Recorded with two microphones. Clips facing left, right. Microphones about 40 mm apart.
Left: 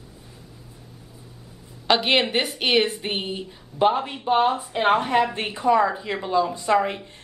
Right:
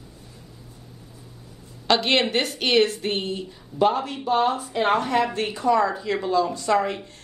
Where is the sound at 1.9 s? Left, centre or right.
Centre.